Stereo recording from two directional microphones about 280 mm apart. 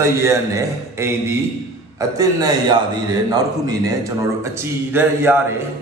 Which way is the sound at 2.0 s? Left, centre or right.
Centre.